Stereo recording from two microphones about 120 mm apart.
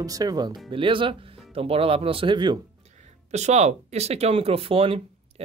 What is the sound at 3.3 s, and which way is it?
Speech, 70° right (ahead or behind).